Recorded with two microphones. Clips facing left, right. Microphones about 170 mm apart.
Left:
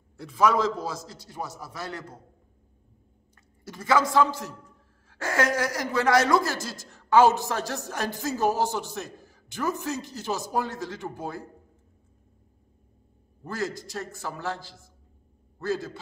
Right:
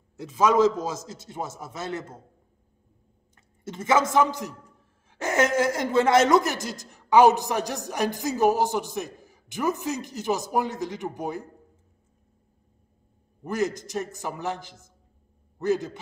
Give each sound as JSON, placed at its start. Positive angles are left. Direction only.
{"t": 0.2, "sound": "a man's voice", "side_deg": -20}
{"t": 3.3, "sound": "a woman's voice", "side_deg": -20}
{"t": 13.4, "sound": "a man's voice", "side_deg": -20}